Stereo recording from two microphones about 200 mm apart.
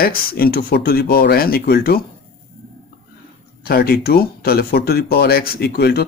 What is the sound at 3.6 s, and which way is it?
Speech, 50° left (ahead or behind).